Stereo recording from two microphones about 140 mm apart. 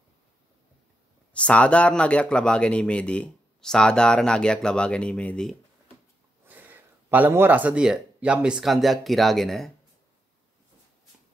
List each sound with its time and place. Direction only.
1.3 s speech: 10° left (ahead or behind)
6.4 s speech: 15° right (ahead or behind)